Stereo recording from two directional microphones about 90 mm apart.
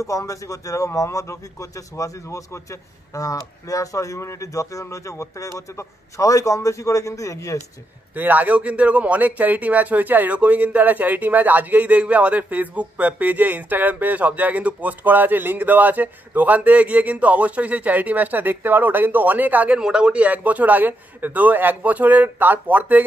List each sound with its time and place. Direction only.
0.0 s speech: 35° left (ahead or behind)
8.1 s a man's voice: 20° right (ahead or behind)